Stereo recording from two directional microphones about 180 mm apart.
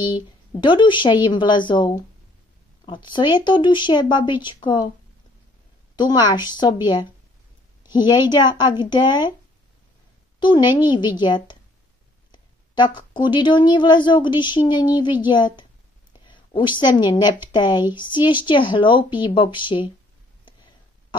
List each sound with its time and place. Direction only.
0.6 s speech: 25° left (ahead or behind)
5.9 s speech: 25° left (ahead or behind)
8.1 s speech: 25° left (ahead or behind)
10.4 s a woman's voice: 25° left (ahead or behind)